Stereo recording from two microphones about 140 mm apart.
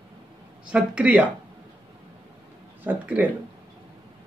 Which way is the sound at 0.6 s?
5° right (ahead or behind).